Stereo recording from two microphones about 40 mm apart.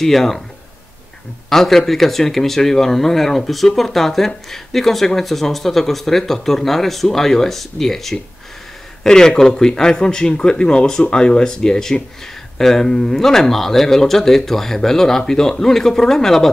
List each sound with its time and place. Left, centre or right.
0.0 s speech: centre
1.5 s speech: centre